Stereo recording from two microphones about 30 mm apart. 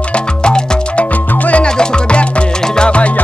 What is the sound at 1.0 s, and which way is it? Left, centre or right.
Music, left.